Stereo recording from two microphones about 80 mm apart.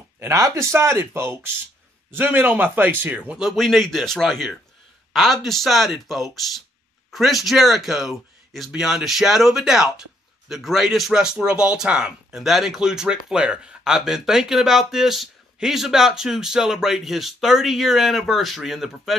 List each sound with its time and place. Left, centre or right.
0.2 s a man's voice: right; by 3.5 s centre
3.5 s speech: centre